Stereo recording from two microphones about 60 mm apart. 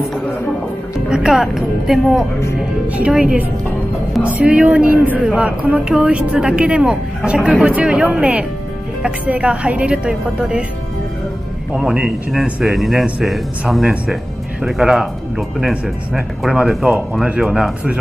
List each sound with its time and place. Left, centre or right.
1.0 s speech: centre
3.1 s a woman's voice: centre
11.8 s speech: centre
12.6 s speech: centre
16.6 s speech: centre